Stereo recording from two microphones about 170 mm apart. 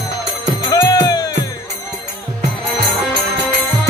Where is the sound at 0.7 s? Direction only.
20° left (ahead or behind).